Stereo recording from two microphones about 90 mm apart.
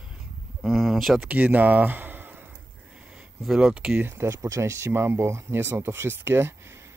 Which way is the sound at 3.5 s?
10° right (ahead or behind).